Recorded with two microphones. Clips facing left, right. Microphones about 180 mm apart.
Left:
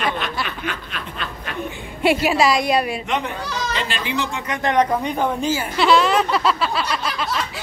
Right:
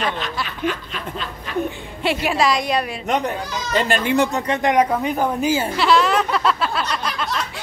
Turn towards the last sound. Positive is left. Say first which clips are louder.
# even
turn(degrees=5)  # may be behind; listen again after turning